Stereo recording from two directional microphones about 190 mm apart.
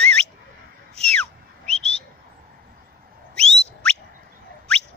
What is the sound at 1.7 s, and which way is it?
Bird, 35° left (ahead or behind).